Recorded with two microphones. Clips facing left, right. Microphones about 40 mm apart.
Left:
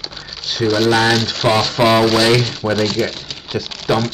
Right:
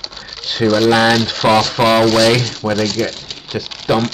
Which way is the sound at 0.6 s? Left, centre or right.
Centre.